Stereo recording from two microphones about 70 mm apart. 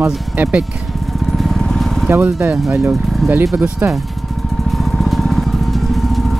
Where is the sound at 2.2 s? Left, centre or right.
Right.